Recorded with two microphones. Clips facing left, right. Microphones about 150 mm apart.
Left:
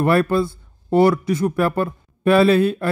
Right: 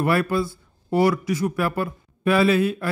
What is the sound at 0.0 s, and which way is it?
Speech, 25° left (ahead or behind).